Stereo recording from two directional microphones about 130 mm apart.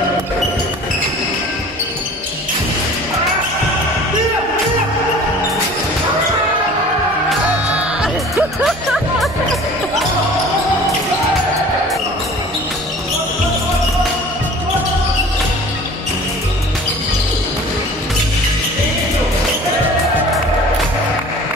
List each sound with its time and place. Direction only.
7.7 s music: 10° right (ahead or behind)